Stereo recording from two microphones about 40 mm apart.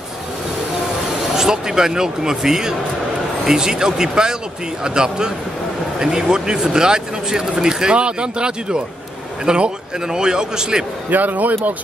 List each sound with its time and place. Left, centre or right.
1.3 s speech: centre
11.1 s speech: right